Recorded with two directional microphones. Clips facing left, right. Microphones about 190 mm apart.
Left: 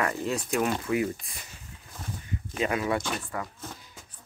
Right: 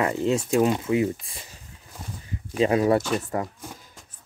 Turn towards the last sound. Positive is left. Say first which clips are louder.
# right 7 dB
turn(degrees=-40)  # may be behind; listen again after turning